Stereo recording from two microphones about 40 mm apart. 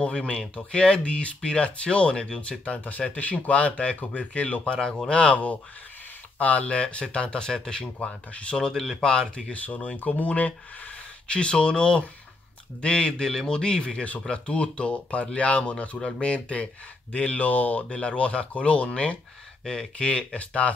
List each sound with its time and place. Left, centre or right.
0.0 s speech: left
2.6 s speech: left; by 7.9 s centre
8.0 s speech: left
8.5 s speech: centre
9.9 s speech: left
13.2 s speech: centre; by 16.0 s left
17.1 s speech: left
17.8 s speech: left
19.6 s speech: centre
20.0 s speech: left